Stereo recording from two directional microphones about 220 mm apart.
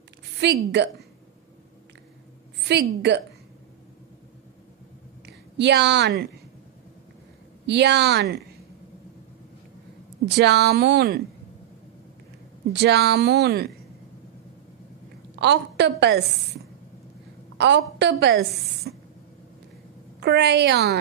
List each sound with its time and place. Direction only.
0.4 s speech: 50° right (ahead or behind)
5.2 s a woman's voice: 50° right (ahead or behind)
7.6 s speech: 50° right (ahead or behind)
10.2 s speech: 50° right (ahead or behind)
12.7 s speech: 50° right (ahead or behind)
15.3 s a woman's voice: 50° right (ahead or behind)
17.6 s speech: 50° right (ahead or behind)
18.9 s a sound: 50° right (ahead or behind)
20.2 s speech: 50° right (ahead or behind)